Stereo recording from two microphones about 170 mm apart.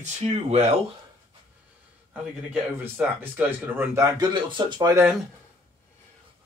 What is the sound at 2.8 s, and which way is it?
Speech, 10° right (ahead or behind).